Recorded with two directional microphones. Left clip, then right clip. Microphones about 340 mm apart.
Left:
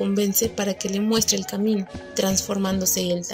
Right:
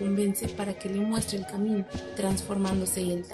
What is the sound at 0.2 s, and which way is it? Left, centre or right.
A woman's voice, left.